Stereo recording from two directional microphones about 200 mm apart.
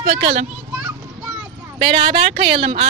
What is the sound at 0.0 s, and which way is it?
Speech, 35° right (ahead or behind).